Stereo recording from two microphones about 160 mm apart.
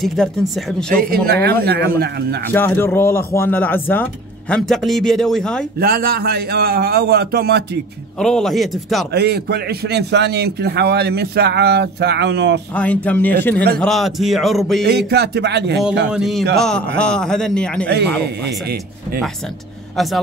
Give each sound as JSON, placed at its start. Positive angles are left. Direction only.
{"t": 0.0, "sound": "speech", "side_deg": 0}
{"t": 0.9, "sound": "speech", "side_deg": -70}
{"t": 2.5, "sound": "speech", "side_deg": 15}
{"t": 5.8, "sound": "a man's voice", "side_deg": -70}
{"t": 8.2, "sound": "speech", "side_deg": 5}
{"t": 9.1, "sound": "a man's voice", "side_deg": -85}
{"t": 12.7, "sound": "speech", "side_deg": 10}
{"t": 14.9, "sound": "a man's voice", "side_deg": -90}
{"t": 16.1, "sound": "speech", "side_deg": 0}
{"t": 20.0, "sound": "speech", "side_deg": 0}